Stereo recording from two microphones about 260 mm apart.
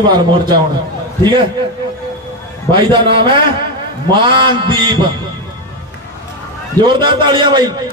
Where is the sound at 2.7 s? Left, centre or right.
Centre.